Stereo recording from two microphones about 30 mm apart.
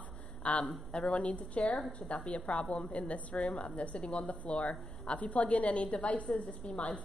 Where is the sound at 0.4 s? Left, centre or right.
Left.